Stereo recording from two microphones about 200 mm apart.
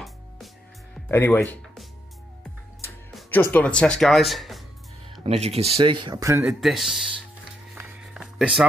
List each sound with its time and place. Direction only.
1.0 s speech: 10° left (ahead or behind)
3.2 s speech: 10° left (ahead or behind)
5.2 s speech: 30° right (ahead or behind)
6.4 s speech: centre (ahead or behind)
7.7 s a sound: 5° right (ahead or behind)